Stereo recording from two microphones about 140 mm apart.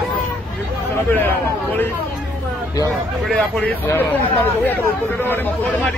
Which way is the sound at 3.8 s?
15° left (ahead or behind).